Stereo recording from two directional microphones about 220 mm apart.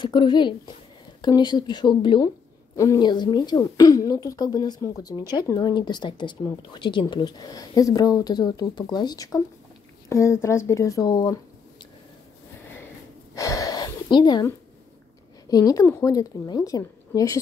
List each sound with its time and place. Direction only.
0.0 s a woman's voice: 20° left (ahead or behind)
13.3 s a sound: 15° left (ahead or behind)
15.4 s a woman's voice: 15° left (ahead or behind)